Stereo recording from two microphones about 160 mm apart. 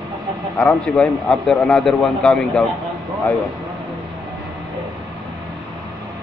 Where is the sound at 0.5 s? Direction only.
5° left (ahead or behind).